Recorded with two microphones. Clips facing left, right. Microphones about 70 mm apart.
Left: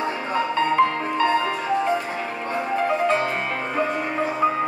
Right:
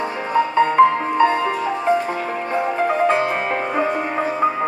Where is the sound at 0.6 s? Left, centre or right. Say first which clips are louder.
Right 6 dB; right.